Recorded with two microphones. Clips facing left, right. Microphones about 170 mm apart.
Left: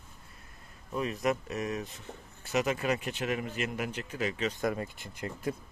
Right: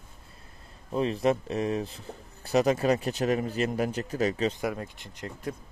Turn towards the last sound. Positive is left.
turn(degrees=5)  # may be behind; listen again after turning